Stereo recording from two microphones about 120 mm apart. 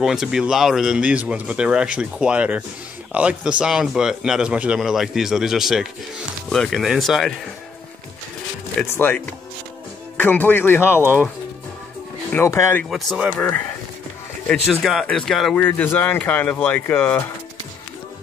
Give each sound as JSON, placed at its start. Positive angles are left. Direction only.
{"t": 0.0, "sound": "a man's voice", "side_deg": -5}
{"t": 8.8, "sound": "speech", "side_deg": 15}
{"t": 12.3, "sound": "speech", "side_deg": 20}
{"t": 12.9, "sound": "a man's voice", "side_deg": 0}
{"t": 13.3, "sound": "speech", "side_deg": 15}
{"t": 14.5, "sound": "a man's voice", "side_deg": 0}
{"t": 15.6, "sound": "speech", "side_deg": 15}